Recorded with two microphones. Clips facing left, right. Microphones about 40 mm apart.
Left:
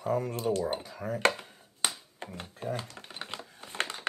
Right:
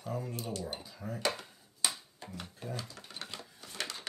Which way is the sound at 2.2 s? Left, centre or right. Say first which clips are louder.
Left 6 dB; left.